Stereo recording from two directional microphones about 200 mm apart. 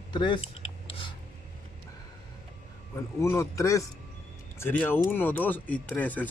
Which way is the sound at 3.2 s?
15° left (ahead or behind).